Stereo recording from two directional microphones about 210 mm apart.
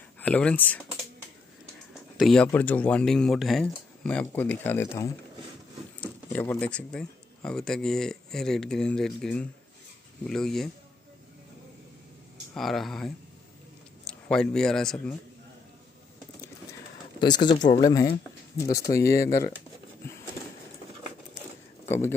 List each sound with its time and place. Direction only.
0.2 s speech: 5° left (ahead or behind)
2.1 s speech: centre (ahead or behind)
12.5 s a man's voice: centre (ahead or behind)
17.2 s speech: 20° left (ahead or behind)
21.8 s a sound: 10° left (ahead or behind)